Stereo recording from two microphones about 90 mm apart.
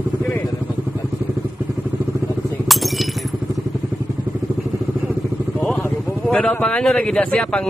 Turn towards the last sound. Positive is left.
turn(degrees=10)  # may be behind; listen again after turning